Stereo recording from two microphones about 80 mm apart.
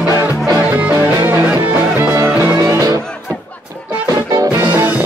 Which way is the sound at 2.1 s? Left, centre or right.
Right.